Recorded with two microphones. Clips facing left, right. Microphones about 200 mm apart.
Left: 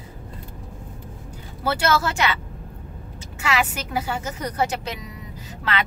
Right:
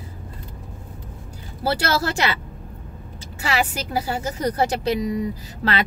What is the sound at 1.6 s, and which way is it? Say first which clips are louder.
Speech: even; 35° right (ahead or behind).